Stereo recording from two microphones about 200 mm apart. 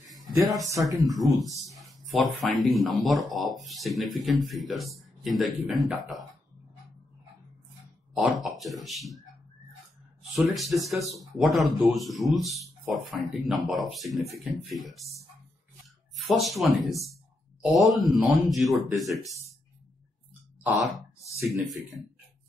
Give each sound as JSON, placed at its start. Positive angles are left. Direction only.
{"t": 0.4, "sound": "speech", "side_deg": 0}
{"t": 0.7, "sound": "speech", "side_deg": -15}
{"t": 1.1, "sound": "speech", "side_deg": 0}
{"t": 1.8, "sound": "a sound", "side_deg": 0}
{"t": 2.7, "sound": "speech", "side_deg": 0}
{"t": 8.1, "sound": "speech", "side_deg": 0}
{"t": 10.3, "sound": "speech", "side_deg": 0}
{"t": 16.3, "sound": "speech", "side_deg": 0}